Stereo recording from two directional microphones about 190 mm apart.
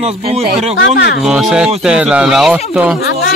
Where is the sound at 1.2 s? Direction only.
5° right (ahead or behind).